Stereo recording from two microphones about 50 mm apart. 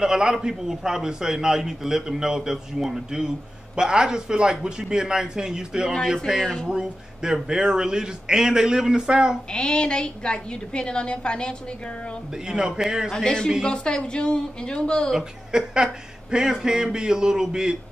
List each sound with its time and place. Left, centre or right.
0.0 s a man's voice: centre
6.4 s a man's voice: centre
6.7 s a man's voice: centre
9.5 s a woman's voice: centre
12.4 s a man's voice: centre
13.1 s a man's voice: centre
15.1 s a man's voice: centre